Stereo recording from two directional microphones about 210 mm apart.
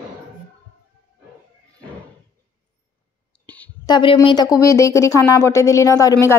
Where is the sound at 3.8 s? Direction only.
25° left (ahead or behind).